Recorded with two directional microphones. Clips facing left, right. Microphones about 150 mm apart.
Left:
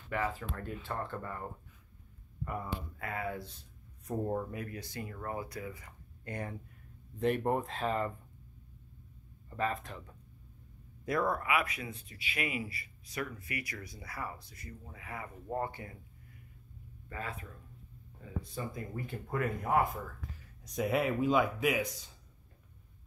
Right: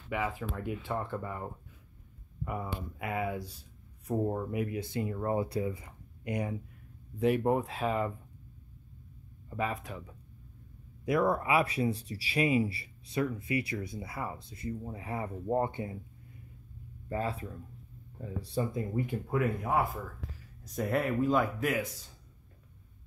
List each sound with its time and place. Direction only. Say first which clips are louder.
0.1 s speech: right 1 dB; 10° right (ahead or behind)
2.4 s speech: right 2 dB; 10° right (ahead or behind)
4.1 s speech: right 3 dB; centre (ahead or behind)
4.5 s speech: right 8 dB; 20° right (ahead or behind)
7.2 s speech: right 3 dB; 5° right (ahead or behind)
9.5 s speech: right 1 dB; 10° right (ahead or behind)
11.4 s speech: right 6 dB; 30° right (ahead or behind)
17.1 s speech: right 8 dB; 30° right (ahead or behind)
19.3 s speech: right 1 dB; 5° right (ahead or behind)